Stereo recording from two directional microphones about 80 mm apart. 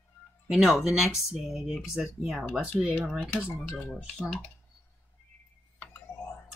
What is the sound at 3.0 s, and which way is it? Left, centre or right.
Speech, centre.